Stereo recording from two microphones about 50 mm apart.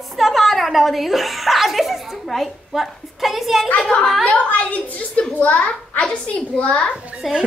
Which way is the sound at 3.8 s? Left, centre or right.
Centre.